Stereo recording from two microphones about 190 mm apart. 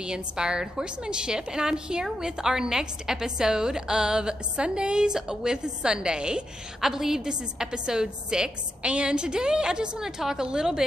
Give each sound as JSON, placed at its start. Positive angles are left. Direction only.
{"t": 0.0, "sound": "a woman's voice", "side_deg": -5}